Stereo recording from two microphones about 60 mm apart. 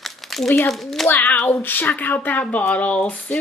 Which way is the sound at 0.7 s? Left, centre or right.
Centre.